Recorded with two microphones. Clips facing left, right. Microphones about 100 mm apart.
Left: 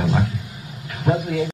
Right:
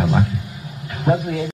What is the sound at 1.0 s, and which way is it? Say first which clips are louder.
Speech: right 1 dB; 15° right (ahead or behind).